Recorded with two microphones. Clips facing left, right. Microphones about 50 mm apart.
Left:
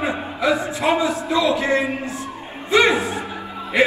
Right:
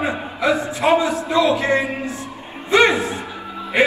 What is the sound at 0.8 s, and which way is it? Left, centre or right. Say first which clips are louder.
Speech: right 4 dB; centre.